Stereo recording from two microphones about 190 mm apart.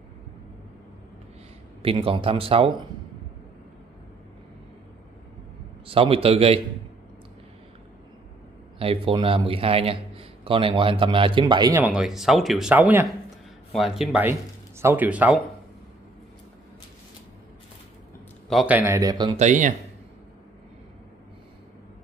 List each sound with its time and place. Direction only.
1.8 s a man's voice: 30° right (ahead or behind)
5.9 s a man's voice: 30° right (ahead or behind)
8.7 s a man's voice: 30° right (ahead or behind)
11.7 s speech: 5° right (ahead or behind)
18.5 s speech: 5° right (ahead or behind); by 19.3 s 20° right (ahead or behind)
19.3 s speech: 40° right (ahead or behind)